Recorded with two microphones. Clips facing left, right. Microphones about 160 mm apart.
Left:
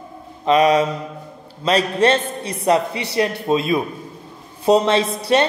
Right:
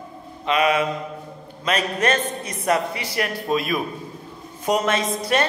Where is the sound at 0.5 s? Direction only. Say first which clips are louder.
Left 5 dB; 40° left (ahead or behind).